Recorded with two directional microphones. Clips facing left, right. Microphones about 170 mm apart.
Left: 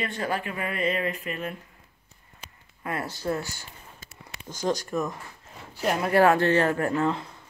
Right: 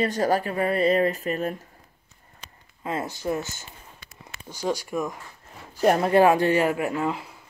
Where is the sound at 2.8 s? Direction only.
20° right (ahead or behind).